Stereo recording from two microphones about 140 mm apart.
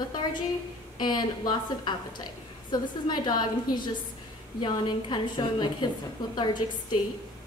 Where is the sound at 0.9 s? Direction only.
30° left (ahead or behind).